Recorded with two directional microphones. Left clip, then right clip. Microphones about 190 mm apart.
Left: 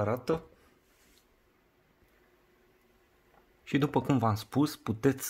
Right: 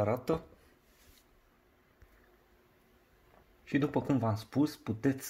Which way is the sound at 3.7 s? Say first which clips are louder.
Left 3 dB; 40° left (ahead or behind).